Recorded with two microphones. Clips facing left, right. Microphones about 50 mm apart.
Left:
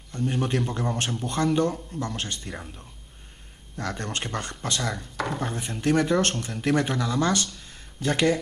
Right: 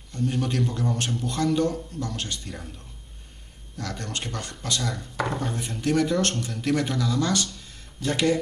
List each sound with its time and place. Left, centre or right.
0.2 s speech: centre
0.9 s a man's voice: left
2.4 s speech: centre
3.7 s speech: left
5.1 s speech: centre
5.8 s speech: left